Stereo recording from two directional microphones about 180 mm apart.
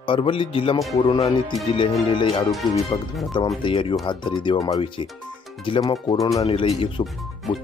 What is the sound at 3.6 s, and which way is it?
Speech, 30° left (ahead or behind).